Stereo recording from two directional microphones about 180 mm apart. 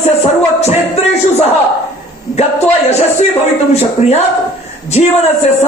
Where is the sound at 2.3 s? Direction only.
35° left (ahead or behind).